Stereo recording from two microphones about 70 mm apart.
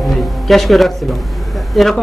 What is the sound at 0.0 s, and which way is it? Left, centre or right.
Music, centre.